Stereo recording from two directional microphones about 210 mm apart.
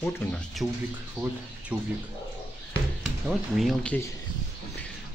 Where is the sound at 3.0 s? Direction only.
Centre (ahead or behind).